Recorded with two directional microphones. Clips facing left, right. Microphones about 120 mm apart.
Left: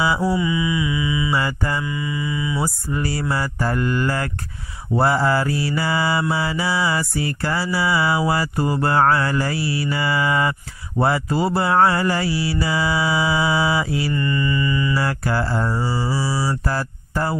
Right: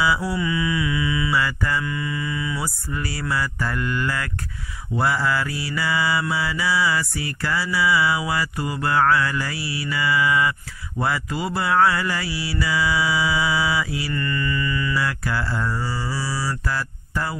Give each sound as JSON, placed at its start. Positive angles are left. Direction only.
{"t": 0.3, "sound": "mantra", "side_deg": 20}
{"t": 15.0, "sound": "mantra", "side_deg": 35}